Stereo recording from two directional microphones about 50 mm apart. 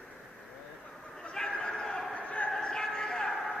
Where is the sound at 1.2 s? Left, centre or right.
Centre.